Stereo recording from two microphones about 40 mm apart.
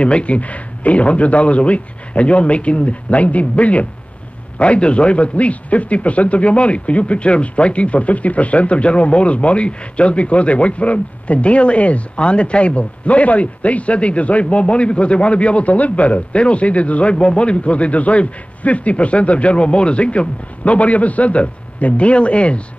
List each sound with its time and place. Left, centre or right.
0.0 s speech: left